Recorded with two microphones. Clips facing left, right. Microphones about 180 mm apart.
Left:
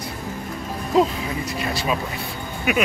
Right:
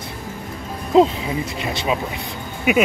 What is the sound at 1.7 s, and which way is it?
Speech, 25° right (ahead or behind).